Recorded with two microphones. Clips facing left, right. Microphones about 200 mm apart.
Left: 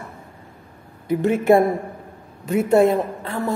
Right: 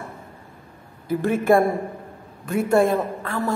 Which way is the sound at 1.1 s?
20° left (ahead or behind).